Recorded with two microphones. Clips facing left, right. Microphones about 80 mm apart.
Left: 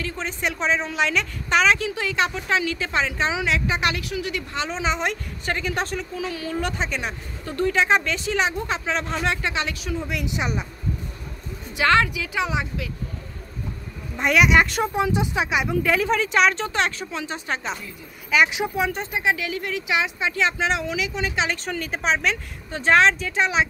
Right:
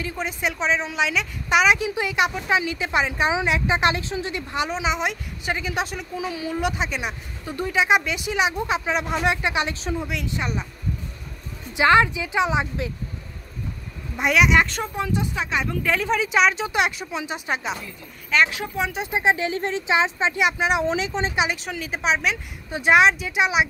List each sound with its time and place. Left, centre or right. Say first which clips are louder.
0.0 s a woman's voice: right 1 dB; centre
4.6 s speech: left 2 dB; centre
10.2 s speech: left 1 dB; centre
11.7 s a woman's voice: right 2 dB; right
14.1 s speech: left 1 dB; centre
15.8 s speech: even; centre
18.3 s speech: left 1 dB; centre
18.8 s a woman's voice: even; centre
19.0 s a woman's voice: right 3 dB; right
20.3 s speech: right 1 dB; centre
20.8 s a woman's voice: right 3 dB; right
21.4 s speech: right 1 dB; centre